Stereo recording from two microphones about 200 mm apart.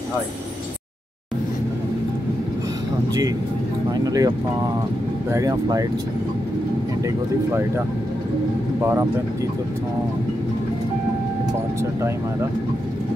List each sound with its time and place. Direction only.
3.9 s speech: 15° right (ahead or behind)
5.3 s speech: 15° right (ahead or behind)